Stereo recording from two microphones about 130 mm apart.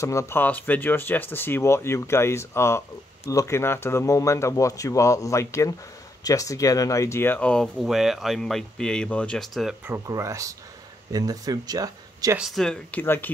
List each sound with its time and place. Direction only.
0.0 s speech: 25° left (ahead or behind); by 9.8 s centre (ahead or behind)
9.8 s speech: 20° right (ahead or behind)
12.4 s speech: centre (ahead or behind); by 13.3 s 15° left (ahead or behind)